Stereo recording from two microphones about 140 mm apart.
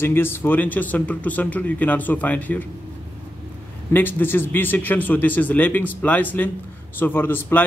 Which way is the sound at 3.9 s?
15° left (ahead or behind).